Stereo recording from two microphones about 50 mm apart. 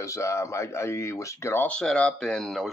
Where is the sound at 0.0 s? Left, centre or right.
Left.